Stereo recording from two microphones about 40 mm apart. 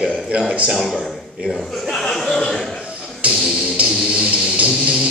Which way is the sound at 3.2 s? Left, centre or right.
Right.